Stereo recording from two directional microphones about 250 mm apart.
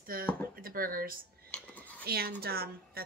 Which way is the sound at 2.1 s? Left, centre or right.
Right.